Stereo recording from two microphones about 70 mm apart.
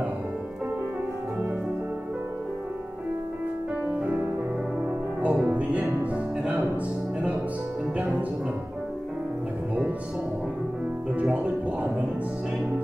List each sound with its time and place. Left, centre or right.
3.8 s music: right
5.2 s music: right
8.0 s music: right
11.3 s music: right